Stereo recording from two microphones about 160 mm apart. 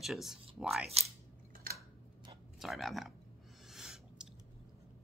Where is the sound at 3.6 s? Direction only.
Centre (ahead or behind).